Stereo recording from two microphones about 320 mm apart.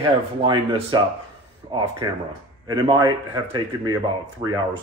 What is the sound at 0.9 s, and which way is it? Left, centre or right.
A man's voice, centre.